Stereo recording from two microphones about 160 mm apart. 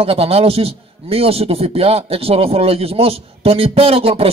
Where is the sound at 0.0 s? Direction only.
35° right (ahead or behind).